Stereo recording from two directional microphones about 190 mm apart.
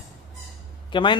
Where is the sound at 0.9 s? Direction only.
25° left (ahead or behind).